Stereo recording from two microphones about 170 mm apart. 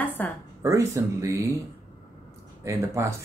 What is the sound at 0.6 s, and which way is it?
Speech, 20° right (ahead or behind).